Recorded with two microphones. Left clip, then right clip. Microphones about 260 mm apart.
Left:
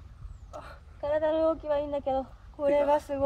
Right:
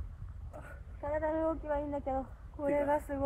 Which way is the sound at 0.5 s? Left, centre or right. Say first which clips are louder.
Left 6 dB; left.